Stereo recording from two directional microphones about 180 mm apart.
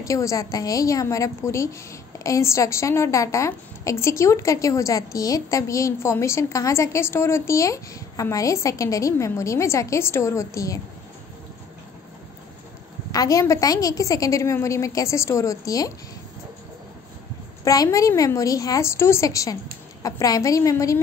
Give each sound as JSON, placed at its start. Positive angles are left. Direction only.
{"t": 0.0, "sound": "a woman's voice", "side_deg": 15}
{"t": 13.1, "sound": "a woman's voice", "side_deg": 20}
{"t": 17.6, "sound": "a woman's voice", "side_deg": 20}